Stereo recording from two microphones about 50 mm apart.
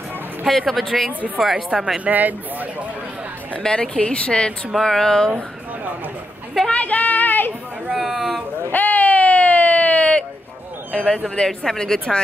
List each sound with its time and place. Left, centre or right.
0.5 s speech: centre
1.7 s speech: centre
2.0 s speech: right
3.6 s speech: left
4.7 s a woman's voice: centre
6.7 s speech: left
8.0 s speech: centre
8.7 s a sound: left
10.9 s a woman's voice: left